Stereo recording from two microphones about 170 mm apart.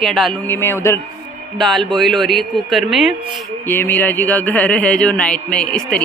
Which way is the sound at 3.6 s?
10° left (ahead or behind).